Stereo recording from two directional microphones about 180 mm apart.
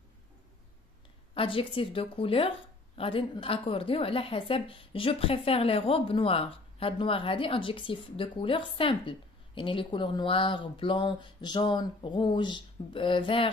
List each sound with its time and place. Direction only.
1.3 s a woman's voice: 30° left (ahead or behind)